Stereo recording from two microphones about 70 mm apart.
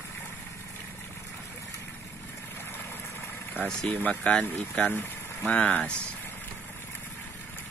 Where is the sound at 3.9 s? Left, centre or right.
Centre.